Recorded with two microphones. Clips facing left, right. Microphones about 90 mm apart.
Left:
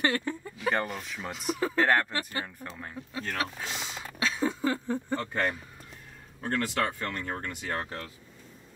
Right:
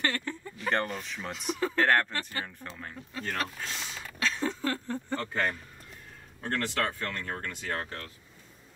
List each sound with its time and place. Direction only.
0.0 s speech: 15° left (ahead or behind)